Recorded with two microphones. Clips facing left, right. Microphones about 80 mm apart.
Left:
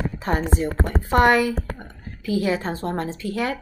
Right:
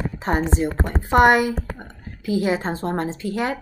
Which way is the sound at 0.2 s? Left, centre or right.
Right.